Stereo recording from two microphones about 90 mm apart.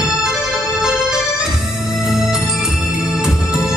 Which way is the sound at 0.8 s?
5° right (ahead or behind).